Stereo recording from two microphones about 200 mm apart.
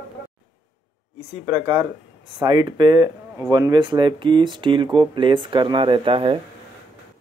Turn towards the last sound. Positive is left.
turn(degrees=-25)  # may be behind; listen again after turning